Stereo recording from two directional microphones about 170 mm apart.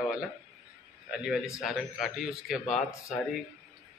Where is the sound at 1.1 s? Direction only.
5° right (ahead or behind).